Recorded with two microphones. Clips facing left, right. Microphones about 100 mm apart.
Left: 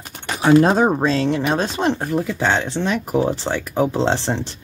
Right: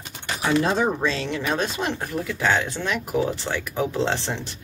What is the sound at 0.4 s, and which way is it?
Speech, 45° left (ahead or behind).